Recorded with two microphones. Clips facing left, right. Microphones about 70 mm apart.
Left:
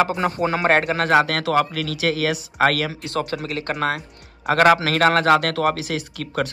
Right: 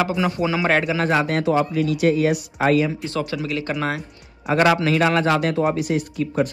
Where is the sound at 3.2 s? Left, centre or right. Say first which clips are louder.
Left 1 dB; left.